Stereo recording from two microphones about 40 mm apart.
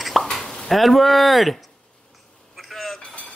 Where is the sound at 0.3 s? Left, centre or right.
Centre.